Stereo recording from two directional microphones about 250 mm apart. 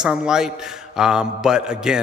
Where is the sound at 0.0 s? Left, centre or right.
Centre.